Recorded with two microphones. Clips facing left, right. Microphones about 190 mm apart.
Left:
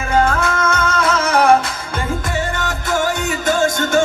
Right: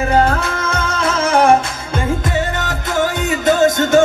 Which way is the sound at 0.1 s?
35° right (ahead or behind).